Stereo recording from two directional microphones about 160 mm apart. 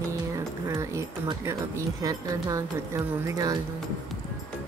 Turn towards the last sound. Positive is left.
turn(degrees=-20)  # may be behind; listen again after turning